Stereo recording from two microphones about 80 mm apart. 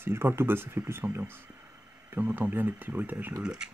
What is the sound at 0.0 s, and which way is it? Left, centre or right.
Speech, right.